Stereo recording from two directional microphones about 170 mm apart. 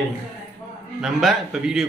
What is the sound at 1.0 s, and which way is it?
Speech, centre (ahead or behind).